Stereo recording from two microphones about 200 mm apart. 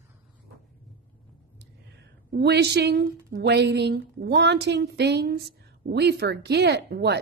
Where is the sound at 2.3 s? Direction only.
55° right (ahead or behind).